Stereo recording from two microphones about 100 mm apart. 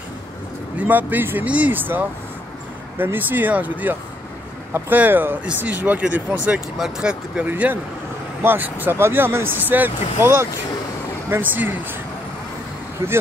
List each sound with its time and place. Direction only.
0.7 s speech: 20° right (ahead or behind)
13.0 s speech: 25° right (ahead or behind)